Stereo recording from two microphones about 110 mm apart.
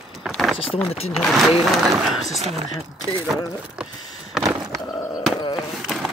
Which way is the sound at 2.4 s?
70° right (ahead or behind).